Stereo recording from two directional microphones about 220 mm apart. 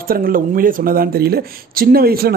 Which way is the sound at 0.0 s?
40° right (ahead or behind).